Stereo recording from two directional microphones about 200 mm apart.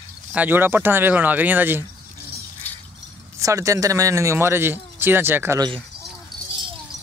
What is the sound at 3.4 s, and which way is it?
Speech, 15° right (ahead or behind).